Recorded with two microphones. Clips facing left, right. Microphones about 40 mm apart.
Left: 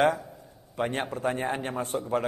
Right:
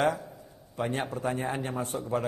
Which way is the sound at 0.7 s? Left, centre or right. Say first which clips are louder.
Left 2 dB; left.